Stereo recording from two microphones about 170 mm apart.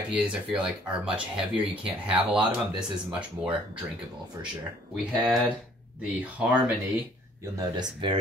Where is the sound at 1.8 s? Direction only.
5° right (ahead or behind).